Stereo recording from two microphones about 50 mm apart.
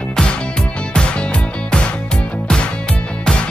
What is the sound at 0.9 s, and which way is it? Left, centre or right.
Music, centre.